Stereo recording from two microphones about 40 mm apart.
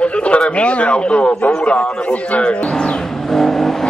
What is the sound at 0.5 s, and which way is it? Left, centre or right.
Speech, left.